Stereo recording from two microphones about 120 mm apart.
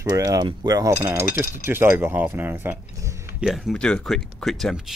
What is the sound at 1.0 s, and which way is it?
Speech, 20° right (ahead or behind).